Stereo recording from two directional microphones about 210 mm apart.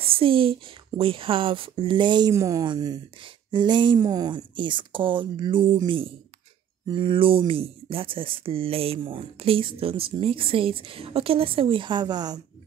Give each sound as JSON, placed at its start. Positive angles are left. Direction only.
{"t": 0.0, "sound": "speech", "side_deg": -25}